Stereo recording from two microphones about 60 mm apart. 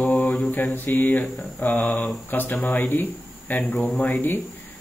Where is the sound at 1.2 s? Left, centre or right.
Centre.